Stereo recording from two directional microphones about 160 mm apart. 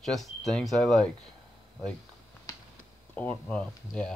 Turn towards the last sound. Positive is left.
turn(degrees=5)  # may be behind; listen again after turning